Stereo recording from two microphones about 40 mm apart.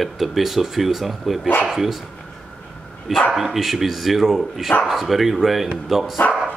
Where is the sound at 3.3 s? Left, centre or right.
Centre.